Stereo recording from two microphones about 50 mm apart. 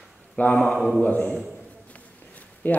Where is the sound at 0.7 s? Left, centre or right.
Centre.